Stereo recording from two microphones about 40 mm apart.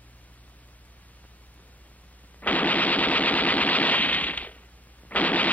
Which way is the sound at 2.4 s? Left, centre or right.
Left.